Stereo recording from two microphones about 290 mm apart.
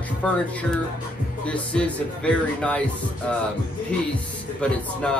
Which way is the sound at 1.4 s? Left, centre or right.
Centre.